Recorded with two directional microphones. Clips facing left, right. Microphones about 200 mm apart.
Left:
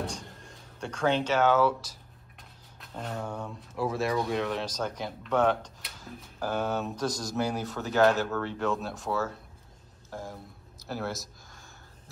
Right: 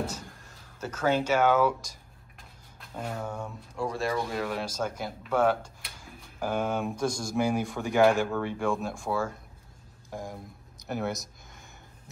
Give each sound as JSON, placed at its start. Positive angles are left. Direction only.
{"t": 0.0, "sound": "a sound", "side_deg": -5}
{"t": 0.7, "sound": "speech", "side_deg": -5}
{"t": 2.8, "sound": "speech", "side_deg": -10}
{"t": 3.7, "sound": "speech", "side_deg": 5}